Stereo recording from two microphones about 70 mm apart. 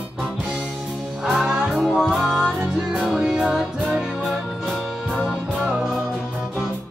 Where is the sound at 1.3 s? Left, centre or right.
Centre.